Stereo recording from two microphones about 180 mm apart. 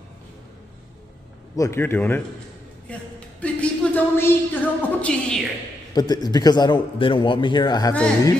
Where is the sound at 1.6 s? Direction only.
15° left (ahead or behind).